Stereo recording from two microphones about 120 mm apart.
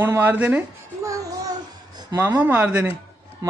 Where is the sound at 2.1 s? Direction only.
15° right (ahead or behind).